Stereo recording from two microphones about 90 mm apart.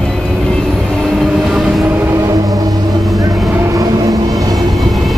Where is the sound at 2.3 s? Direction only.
40° right (ahead or behind).